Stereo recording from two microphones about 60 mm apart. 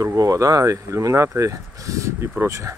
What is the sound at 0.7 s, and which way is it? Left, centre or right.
Speech, right.